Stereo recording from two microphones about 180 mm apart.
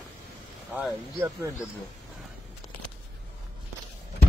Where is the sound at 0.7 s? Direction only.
10° right (ahead or behind).